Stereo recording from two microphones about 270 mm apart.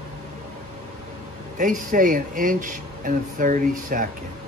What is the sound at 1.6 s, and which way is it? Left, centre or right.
Speech, right.